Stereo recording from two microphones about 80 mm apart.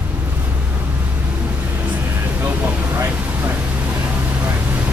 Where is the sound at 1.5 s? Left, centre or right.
Right.